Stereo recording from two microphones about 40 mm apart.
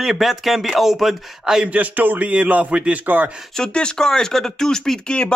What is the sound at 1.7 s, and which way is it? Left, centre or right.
Speech, right.